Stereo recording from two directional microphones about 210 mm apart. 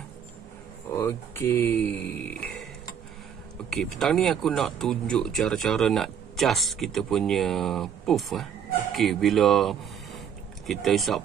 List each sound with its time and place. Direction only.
0.9 s speech: 10° left (ahead or behind)
3.7 s speech: centre (ahead or behind)